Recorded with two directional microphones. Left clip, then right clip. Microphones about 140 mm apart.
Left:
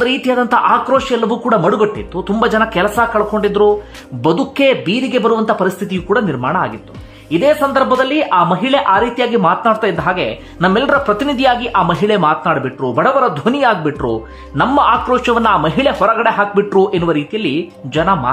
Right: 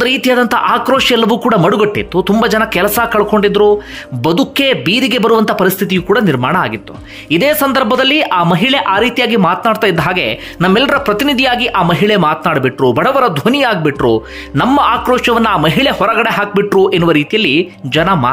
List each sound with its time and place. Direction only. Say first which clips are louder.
0.0 s speech: right 3 dB; 20° right (ahead or behind)
2.3 s speech: left 1 dB; 20° right (ahead or behind)
3.1 s speech: right 4 dB; 40° right (ahead or behind)
3.4 s speech: right 3 dB; 25° right (ahead or behind)